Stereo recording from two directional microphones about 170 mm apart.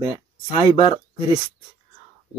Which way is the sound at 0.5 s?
30° left (ahead or behind).